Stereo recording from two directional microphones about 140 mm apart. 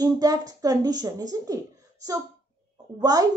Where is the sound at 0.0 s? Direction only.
25° right (ahead or behind).